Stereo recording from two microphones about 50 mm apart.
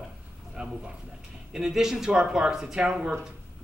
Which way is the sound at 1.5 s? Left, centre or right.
Centre.